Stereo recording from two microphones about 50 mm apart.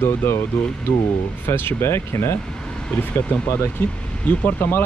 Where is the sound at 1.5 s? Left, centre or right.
Left.